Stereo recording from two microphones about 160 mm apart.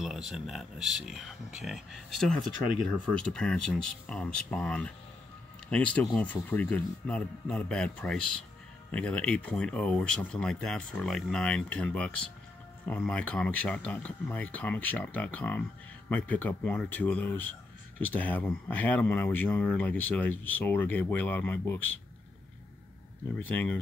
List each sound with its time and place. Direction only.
0.0 s speech: centre (ahead or behind)
23.4 s speech: 10° left (ahead or behind)